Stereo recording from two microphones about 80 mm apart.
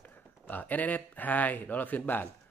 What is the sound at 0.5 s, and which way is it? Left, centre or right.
Speech, left.